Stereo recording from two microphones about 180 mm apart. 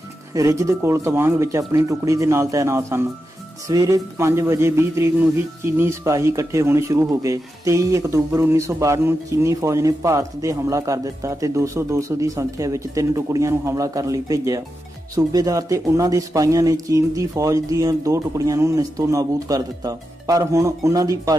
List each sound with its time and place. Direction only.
0.3 s a man's voice: 15° right (ahead or behind)